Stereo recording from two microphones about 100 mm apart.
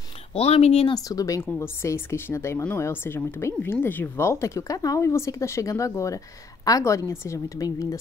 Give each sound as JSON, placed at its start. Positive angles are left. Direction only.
{"t": 0.3, "sound": "speech", "side_deg": 90}
{"t": 0.9, "sound": "a woman's voice", "side_deg": 35}